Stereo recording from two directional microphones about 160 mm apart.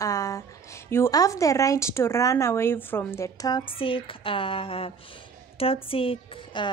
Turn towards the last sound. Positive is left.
turn(degrees=35)  # may be behind; listen again after turning